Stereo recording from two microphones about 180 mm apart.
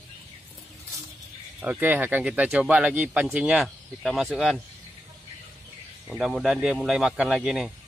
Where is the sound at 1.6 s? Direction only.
10° right (ahead or behind).